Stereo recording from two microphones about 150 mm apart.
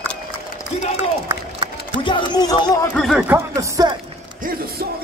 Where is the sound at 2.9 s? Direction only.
Centre (ahead or behind).